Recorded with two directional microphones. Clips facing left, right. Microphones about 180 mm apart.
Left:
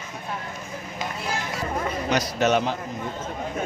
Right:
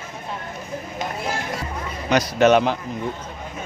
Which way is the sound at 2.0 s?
65° right (ahead or behind).